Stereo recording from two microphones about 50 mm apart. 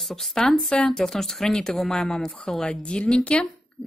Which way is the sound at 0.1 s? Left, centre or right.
Centre.